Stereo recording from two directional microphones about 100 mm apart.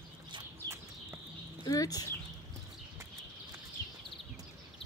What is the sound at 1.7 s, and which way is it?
Speech, 40° left (ahead or behind).